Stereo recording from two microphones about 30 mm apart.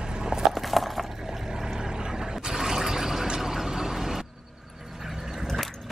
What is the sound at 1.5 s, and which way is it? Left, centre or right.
Vehicle, centre.